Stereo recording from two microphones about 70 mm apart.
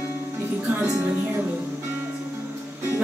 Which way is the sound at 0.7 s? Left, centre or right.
Right.